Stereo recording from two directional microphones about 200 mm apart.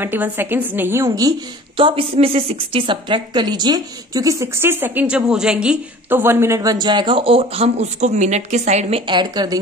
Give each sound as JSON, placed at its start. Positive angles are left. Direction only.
{"t": 0.0, "sound": "a woman's voice", "side_deg": -10}
{"t": 1.8, "sound": "a woman's voice", "side_deg": -25}
{"t": 9.0, "sound": "a woman's voice", "side_deg": -20}